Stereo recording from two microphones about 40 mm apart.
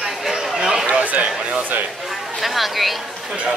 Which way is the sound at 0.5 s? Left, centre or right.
Centre.